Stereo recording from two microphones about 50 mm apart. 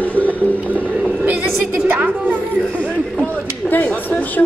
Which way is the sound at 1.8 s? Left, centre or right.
Right.